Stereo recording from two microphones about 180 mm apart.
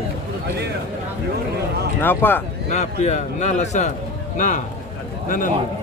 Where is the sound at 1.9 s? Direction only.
10° left (ahead or behind).